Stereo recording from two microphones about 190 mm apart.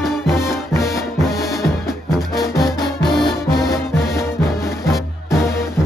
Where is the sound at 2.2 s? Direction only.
Centre (ahead or behind).